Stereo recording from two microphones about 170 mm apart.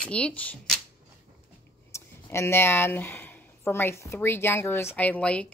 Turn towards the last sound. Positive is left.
turn(degrees=10)  # may be behind; listen again after turning